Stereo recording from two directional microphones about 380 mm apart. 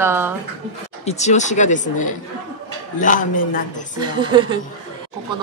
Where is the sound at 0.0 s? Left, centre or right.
Centre.